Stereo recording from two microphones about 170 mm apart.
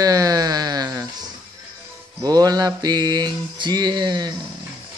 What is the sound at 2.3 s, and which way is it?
Mantra, 20° right (ahead or behind).